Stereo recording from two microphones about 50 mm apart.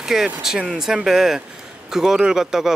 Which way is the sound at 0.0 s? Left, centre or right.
Centre.